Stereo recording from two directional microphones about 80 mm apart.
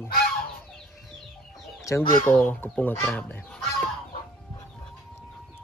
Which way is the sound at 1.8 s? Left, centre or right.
Left.